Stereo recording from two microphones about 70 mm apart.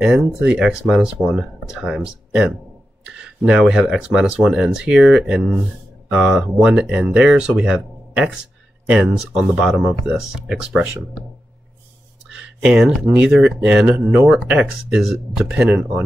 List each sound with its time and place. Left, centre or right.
0.0 s speech: centre
12.3 s a sound: centre
13.0 s speech: centre